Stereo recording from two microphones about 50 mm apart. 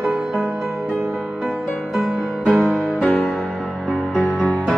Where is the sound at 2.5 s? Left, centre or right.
Left.